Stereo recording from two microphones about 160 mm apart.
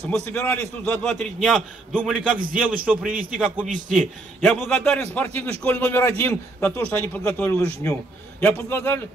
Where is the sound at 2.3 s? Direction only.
60° right (ahead or behind).